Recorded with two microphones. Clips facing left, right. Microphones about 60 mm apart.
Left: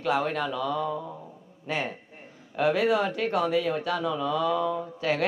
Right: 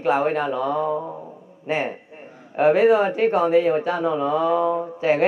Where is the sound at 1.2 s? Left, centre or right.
Right.